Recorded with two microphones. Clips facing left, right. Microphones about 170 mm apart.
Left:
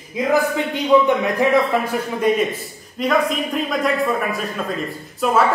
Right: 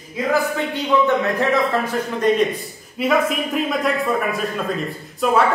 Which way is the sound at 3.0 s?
5° right (ahead or behind).